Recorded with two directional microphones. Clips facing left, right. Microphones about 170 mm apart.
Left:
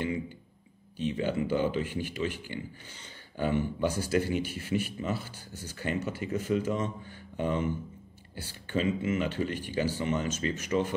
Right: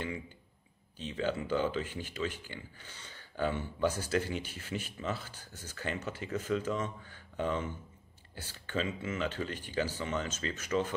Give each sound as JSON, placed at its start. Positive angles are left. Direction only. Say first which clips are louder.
{"t": 1.2, "sound": "speech", "louder": "left 2 dB", "side_deg": 10}